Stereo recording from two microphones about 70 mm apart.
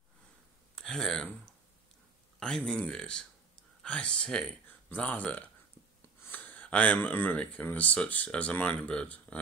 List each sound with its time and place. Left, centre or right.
0.7 s speech: centre